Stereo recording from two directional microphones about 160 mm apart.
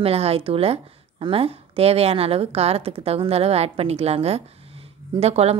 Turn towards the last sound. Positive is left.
turn(degrees=-40)  # may be behind; listen again after turning